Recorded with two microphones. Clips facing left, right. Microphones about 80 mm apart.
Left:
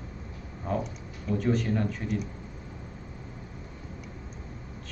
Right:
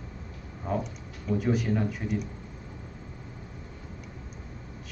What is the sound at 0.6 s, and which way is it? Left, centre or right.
Speech, centre.